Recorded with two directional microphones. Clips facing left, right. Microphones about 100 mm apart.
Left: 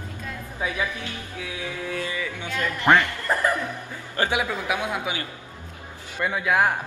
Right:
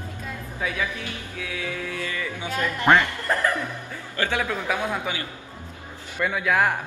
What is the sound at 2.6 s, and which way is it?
Speech, 20° right (ahead or behind).